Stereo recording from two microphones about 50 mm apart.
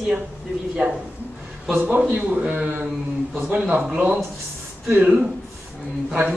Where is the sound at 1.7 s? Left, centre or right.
Right.